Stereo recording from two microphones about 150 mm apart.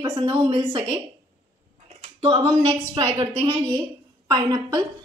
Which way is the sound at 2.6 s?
35° right (ahead or behind).